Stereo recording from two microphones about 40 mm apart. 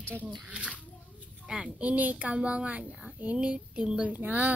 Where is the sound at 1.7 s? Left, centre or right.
Right.